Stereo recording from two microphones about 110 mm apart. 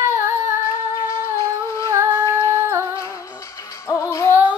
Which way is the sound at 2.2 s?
25° left (ahead or behind).